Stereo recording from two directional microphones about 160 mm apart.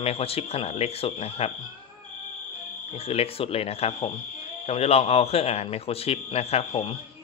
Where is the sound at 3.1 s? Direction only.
40° left (ahead or behind).